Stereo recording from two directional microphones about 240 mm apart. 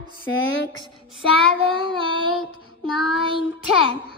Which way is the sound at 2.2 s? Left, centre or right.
Left.